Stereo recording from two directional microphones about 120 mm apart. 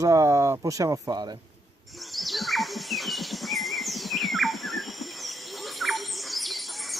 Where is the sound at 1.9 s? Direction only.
Centre (ahead or behind).